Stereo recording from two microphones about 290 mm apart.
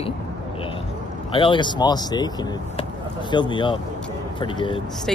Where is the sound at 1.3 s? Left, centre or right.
Centre.